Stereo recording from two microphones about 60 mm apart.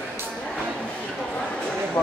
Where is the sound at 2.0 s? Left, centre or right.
Left.